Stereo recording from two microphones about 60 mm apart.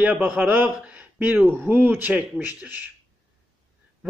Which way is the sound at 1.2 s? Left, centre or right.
Right.